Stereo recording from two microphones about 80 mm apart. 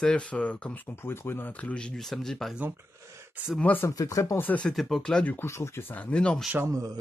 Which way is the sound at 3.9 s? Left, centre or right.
Left.